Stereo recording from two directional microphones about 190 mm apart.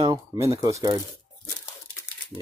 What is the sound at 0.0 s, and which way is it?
Speech, 20° right (ahead or behind).